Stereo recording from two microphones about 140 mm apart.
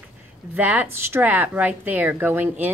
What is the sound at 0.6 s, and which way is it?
A woman's voice, 10° right (ahead or behind).